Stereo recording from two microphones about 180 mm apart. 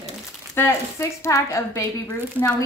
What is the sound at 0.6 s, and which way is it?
A woman's voice, 15° left (ahead or behind).